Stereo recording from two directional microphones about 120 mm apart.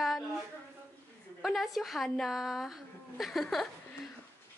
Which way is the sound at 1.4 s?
Centre (ahead or behind).